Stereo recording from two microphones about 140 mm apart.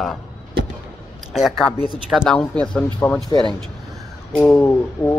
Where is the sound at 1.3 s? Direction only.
Centre (ahead or behind).